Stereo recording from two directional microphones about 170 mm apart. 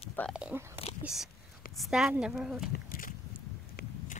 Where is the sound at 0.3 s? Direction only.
5° right (ahead or behind).